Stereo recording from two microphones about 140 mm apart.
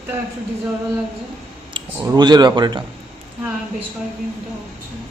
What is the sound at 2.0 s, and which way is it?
Speech, 25° right (ahead or behind).